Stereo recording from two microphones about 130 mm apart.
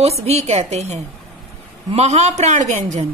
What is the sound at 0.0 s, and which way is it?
A woman's voice, 55° right (ahead or behind).